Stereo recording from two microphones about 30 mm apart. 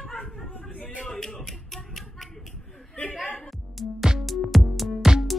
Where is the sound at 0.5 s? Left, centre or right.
Left.